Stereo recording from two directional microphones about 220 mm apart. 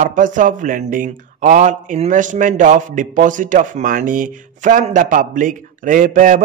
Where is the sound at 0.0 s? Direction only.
35° right (ahead or behind).